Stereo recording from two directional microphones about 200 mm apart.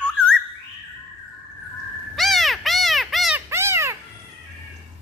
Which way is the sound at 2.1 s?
Centre (ahead or behind).